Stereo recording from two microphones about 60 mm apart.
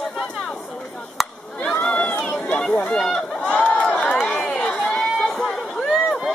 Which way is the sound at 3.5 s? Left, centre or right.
Left.